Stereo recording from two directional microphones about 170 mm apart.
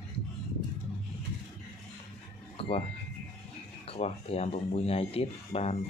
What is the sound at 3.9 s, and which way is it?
Speech, 35° left (ahead or behind).